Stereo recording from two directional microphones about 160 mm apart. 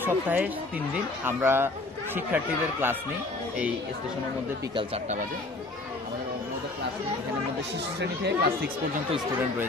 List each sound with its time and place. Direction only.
0.0 s speech: 10° right (ahead or behind)
8.0 s speech: 85° right